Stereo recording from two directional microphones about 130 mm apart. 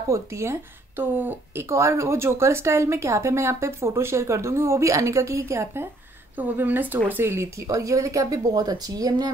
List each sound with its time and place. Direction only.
0.1 s speech: 20° right (ahead or behind)